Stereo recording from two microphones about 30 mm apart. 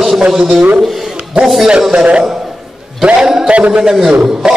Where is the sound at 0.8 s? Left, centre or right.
Centre.